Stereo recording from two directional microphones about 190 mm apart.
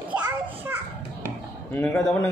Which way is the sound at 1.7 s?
5° left (ahead or behind).